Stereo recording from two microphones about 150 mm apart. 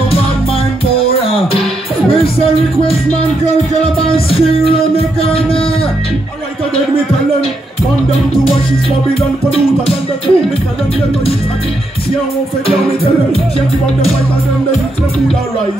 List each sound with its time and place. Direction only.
4.3 s music: 40° left (ahead or behind)
9.5 s music: 40° left (ahead or behind)